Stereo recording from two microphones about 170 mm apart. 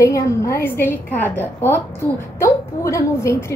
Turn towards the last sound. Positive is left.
turn(degrees=15)  # may be behind; listen again after turning